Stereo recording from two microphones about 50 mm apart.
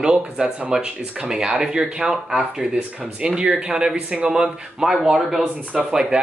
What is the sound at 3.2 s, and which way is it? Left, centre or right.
Speech, centre.